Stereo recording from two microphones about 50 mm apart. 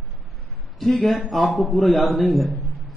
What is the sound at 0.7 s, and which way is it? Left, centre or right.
A man's voice, centre.